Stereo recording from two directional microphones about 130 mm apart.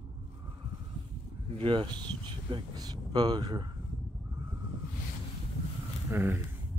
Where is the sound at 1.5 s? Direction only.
40° right (ahead or behind).